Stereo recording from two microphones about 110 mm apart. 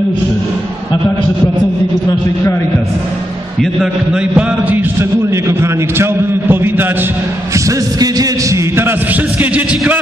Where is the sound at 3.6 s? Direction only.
5° right (ahead or behind).